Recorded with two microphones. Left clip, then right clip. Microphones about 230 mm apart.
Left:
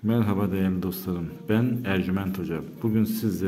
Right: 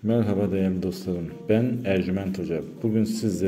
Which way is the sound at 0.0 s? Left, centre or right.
Centre.